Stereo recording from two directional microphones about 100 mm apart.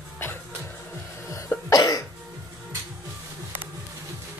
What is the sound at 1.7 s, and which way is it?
Cough, 40° left (ahead or behind).